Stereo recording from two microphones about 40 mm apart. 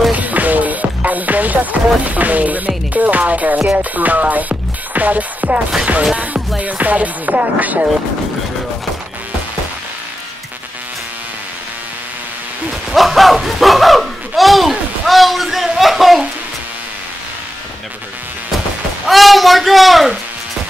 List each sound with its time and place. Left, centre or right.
0.1 s music: right
6.6 s music: right
12.9 s speech: centre
19.0 s speech: centre